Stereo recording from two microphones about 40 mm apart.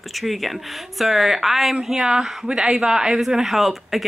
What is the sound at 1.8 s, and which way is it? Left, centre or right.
Speech, centre.